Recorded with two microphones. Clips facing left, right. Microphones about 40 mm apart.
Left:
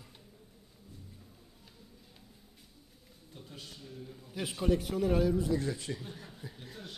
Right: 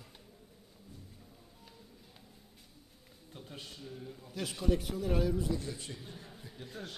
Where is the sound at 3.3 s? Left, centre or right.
Centre.